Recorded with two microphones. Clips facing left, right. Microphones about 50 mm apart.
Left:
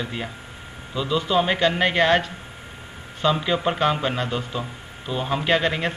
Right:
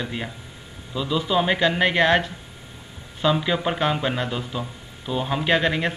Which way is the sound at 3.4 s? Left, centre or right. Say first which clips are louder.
Left 1 dB; centre.